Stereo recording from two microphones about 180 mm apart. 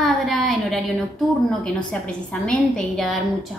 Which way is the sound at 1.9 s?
5° left (ahead or behind).